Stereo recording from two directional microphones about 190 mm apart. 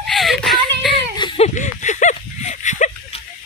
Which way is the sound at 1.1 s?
30° left (ahead or behind).